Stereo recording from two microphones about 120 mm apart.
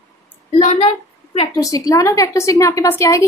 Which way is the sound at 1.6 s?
30° left (ahead or behind).